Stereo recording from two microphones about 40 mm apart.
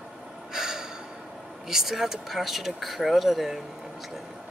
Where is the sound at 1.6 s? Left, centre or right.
Centre.